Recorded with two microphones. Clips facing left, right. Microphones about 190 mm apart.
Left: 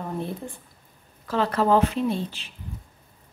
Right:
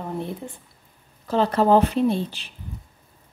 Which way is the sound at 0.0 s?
15° right (ahead or behind).